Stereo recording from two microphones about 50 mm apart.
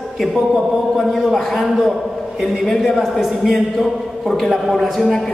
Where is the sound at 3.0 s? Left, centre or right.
Centre.